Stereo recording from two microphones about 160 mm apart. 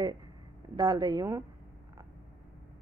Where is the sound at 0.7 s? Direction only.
25° right (ahead or behind).